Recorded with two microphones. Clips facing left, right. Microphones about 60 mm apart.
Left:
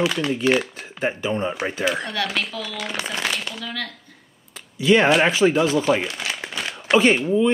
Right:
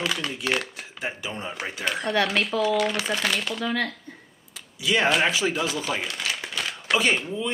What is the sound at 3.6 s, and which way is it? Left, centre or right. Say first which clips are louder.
Speech: right 4 dB; right.